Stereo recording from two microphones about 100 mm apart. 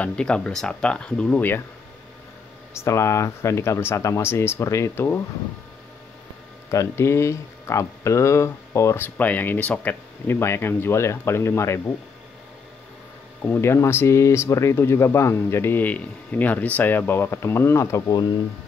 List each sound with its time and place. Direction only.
0.0 s speech: 10° left (ahead or behind)
2.7 s speech: 30° left (ahead or behind)
6.7 s speech: 30° left (ahead or behind)
13.4 s speech: 25° left (ahead or behind)